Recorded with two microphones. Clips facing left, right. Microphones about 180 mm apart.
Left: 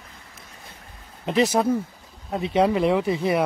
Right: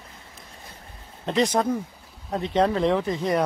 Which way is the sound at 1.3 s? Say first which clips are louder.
Left 2 dB; 5° left (ahead or behind).